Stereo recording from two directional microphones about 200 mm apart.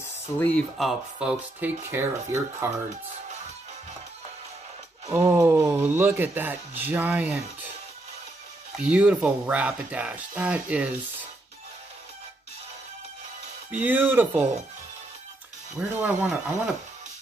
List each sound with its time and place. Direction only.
0.4 s speech: centre (ahead or behind)
5.1 s speech: 15° right (ahead or behind)
8.7 s speech: 5° right (ahead or behind)
13.7 s speech: 10° right (ahead or behind)
15.8 s speech: 5° right (ahead or behind)